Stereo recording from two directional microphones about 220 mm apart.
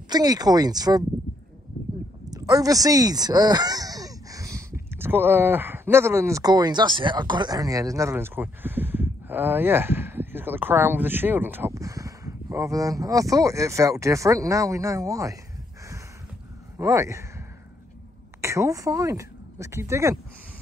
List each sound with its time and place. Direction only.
0.1 s speech: 15° right (ahead or behind)
2.3 s speech: 15° right (ahead or behind)
16.7 s speech: 15° right (ahead or behind)
18.4 s speech: 15° right (ahead or behind)